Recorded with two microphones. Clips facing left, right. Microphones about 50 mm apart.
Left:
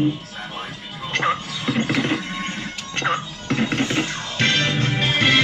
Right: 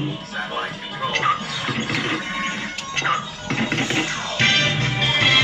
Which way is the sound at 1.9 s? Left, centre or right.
Centre.